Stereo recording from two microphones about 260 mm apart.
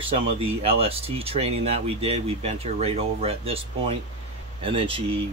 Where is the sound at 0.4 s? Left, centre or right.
Right.